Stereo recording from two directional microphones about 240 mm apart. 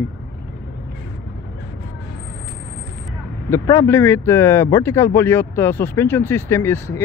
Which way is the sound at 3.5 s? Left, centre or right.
Centre.